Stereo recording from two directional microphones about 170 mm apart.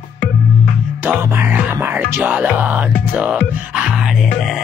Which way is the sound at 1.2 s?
10° right (ahead or behind).